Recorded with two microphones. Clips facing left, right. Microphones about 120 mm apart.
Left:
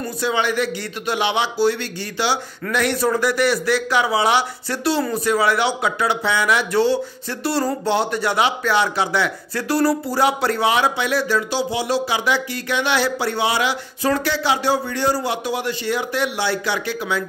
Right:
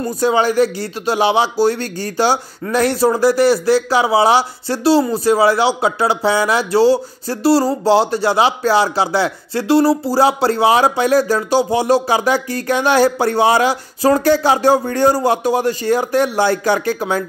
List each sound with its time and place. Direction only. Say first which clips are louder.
0.2 s speech: right 7 dB; 40° right (ahead or behind)